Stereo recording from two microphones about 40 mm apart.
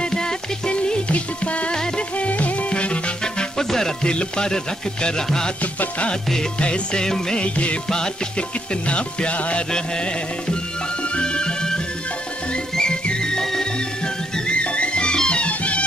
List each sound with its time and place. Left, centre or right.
0.0 s music: left
1.7 s music: left
2.1 s music: left
3.5 s music: centre
5.6 s music: left
6.6 s music: left
7.4 s music: left
7.9 s music: centre
8.8 s music: left
11.1 s music: left
14.5 s music: left